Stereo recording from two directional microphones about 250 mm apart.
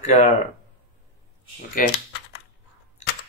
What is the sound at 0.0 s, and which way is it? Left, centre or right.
Speech, left.